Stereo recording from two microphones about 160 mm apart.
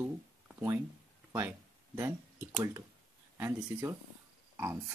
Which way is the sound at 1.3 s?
15° right (ahead or behind).